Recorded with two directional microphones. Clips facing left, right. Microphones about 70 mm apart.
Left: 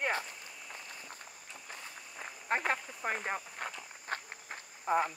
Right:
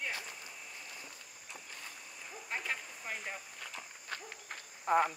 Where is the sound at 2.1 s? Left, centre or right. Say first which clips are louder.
Left 8 dB; left.